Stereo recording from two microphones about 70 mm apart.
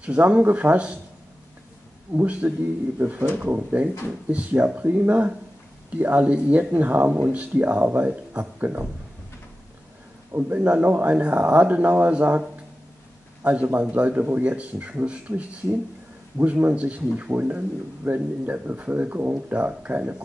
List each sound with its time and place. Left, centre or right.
0.0 s speech: centre
2.1 s speech: centre
3.0 s speech: right
10.3 s speech: right